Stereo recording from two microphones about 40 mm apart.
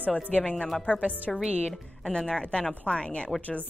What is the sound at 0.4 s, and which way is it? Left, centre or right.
Speech, left.